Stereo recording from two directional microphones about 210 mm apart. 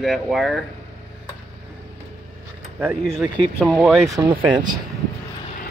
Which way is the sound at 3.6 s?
Centre (ahead or behind).